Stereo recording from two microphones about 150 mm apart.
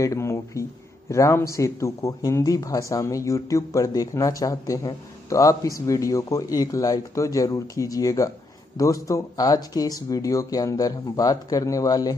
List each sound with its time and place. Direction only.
0.0 s speech: 20° left (ahead or behind)